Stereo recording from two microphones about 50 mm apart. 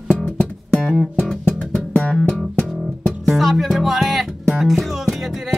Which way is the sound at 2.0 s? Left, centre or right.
Centre.